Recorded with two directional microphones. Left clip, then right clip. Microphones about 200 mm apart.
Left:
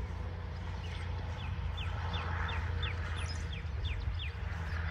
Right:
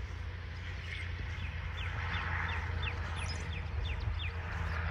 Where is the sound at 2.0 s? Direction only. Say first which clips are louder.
Right 3 dB; 10° right (ahead or behind).